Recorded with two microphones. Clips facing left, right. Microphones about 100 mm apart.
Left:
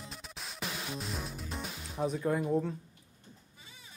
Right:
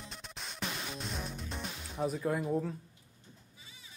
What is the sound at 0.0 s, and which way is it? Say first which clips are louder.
Music: left 1 dB; centre (ahead or behind).